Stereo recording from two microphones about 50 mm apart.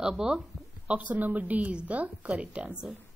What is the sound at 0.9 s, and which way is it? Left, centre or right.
A woman's voice, right.